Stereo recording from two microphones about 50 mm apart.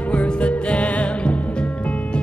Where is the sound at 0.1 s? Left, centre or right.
Left.